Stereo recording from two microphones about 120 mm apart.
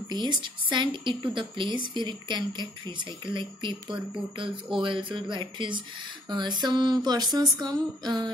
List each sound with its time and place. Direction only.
0.1 s a woman's voice: 40° right (ahead or behind)